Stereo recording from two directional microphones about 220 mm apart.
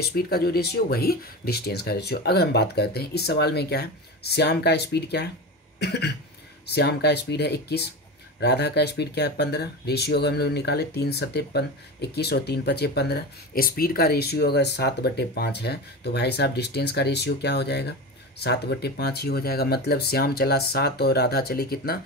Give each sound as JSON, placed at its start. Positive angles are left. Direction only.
{"t": 0.1, "sound": "speech", "side_deg": 45}